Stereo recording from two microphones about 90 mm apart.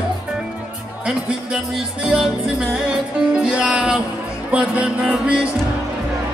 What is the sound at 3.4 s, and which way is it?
Music, 10° right (ahead or behind).